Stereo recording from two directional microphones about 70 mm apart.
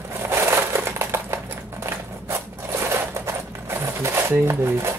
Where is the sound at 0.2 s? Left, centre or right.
Right.